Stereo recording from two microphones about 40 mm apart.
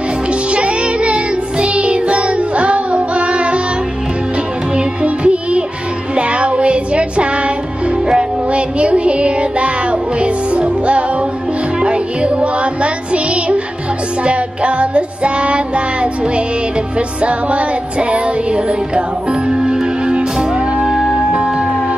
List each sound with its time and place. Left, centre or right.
0.5 s music: right
4.7 s music: right
6.1 s child singing: right
8.5 s music: right; by 21.3 s centre